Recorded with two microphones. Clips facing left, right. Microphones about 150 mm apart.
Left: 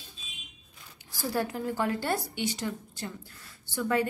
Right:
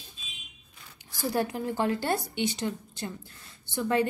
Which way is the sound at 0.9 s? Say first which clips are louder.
Right 2 dB; 20° right (ahead or behind).